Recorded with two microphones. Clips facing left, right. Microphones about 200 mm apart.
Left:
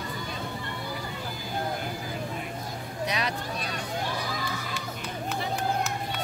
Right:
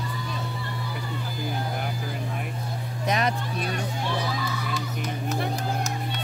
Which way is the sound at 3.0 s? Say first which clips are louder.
Right 5 dB; 50° right (ahead or behind).